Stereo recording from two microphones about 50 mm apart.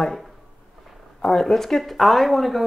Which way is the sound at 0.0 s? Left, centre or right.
Centre.